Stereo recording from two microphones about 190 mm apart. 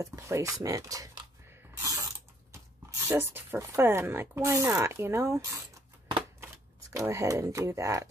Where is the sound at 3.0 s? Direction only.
10° right (ahead or behind).